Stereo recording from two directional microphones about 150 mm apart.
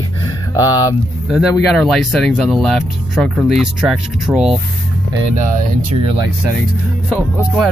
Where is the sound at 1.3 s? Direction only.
5° left (ahead or behind).